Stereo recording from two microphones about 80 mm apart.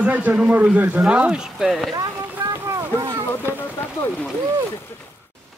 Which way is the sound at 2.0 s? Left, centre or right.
Right.